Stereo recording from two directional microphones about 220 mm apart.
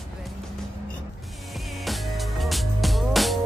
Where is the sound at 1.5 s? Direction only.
Centre (ahead or behind).